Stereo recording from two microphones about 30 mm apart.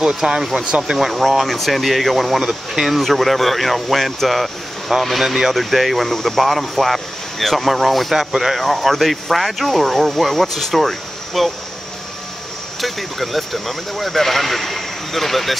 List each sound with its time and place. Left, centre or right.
0.0 s speech: centre
0.7 s speech: right
0.9 s speech: centre
2.4 s speech: centre
2.9 s speech: centre
5.2 s speech: centre
5.5 s speech: centre
8.2 s speech: centre
8.5 s speech: centre
12.8 s speech: centre